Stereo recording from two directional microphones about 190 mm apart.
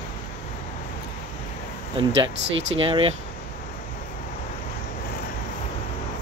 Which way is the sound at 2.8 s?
30° right (ahead or behind).